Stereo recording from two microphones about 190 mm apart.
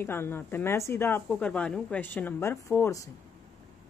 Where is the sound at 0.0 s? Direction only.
10° left (ahead or behind).